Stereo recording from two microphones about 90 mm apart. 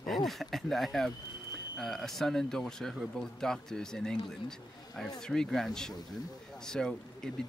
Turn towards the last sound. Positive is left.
turn(degrees=5)  # may be behind; listen again after turning